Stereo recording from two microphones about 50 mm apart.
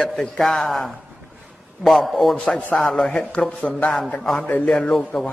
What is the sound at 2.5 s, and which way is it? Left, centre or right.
A man's voice, centre.